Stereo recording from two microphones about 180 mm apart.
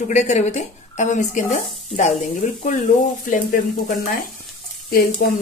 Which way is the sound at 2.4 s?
40° left (ahead or behind).